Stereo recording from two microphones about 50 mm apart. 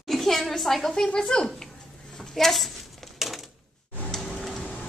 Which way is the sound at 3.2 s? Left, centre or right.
Centre.